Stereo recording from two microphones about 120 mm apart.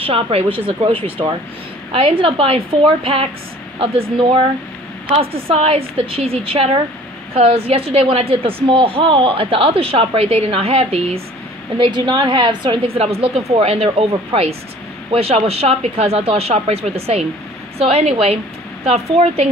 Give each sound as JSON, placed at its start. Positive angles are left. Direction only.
{"t": 0.0, "sound": "a woman's voice", "side_deg": -55}
{"t": 11.9, "sound": "a woman's voice", "side_deg": -40}
{"t": 12.8, "sound": "speech", "side_deg": -55}
{"t": 15.0, "sound": "speech", "side_deg": -55}